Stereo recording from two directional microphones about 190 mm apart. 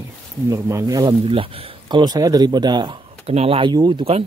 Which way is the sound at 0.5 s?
15° right (ahead or behind).